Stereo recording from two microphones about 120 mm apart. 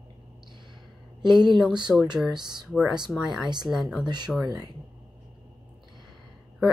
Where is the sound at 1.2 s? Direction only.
40° right (ahead or behind).